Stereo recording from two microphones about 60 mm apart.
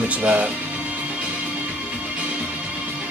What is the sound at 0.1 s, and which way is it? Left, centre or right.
Speech, right.